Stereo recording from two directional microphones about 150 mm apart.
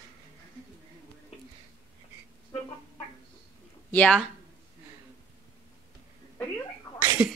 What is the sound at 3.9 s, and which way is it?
Speech, 10° left (ahead or behind).